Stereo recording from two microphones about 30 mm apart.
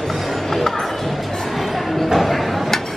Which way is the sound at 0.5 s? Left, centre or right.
Centre.